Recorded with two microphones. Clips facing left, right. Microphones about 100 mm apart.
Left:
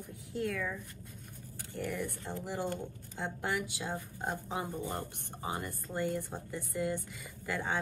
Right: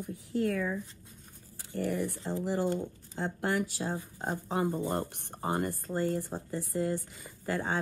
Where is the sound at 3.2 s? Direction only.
50° right (ahead or behind).